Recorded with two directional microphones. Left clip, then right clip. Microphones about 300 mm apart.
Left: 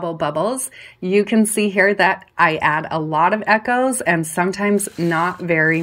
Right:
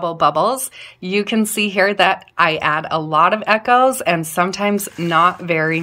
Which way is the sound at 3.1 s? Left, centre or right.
Right.